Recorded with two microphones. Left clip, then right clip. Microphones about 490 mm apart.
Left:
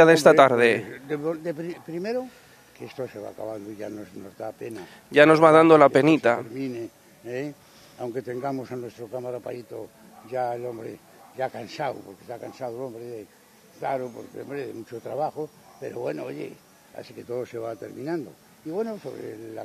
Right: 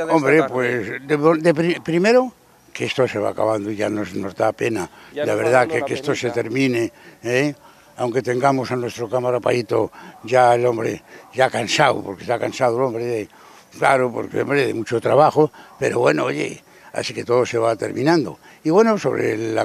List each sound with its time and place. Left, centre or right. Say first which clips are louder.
0.0 s a man's voice: left 2 dB; left
0.8 s speech: right 12 dB; right
5.1 s a man's voice: left 9 dB; left
6.5 s speech: right 13 dB; right